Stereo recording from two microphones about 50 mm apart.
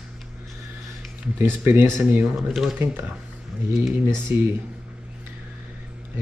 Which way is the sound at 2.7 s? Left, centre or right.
Right.